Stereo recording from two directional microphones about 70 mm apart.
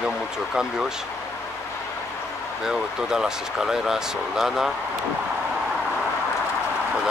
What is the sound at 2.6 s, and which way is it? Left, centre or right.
Speech, centre.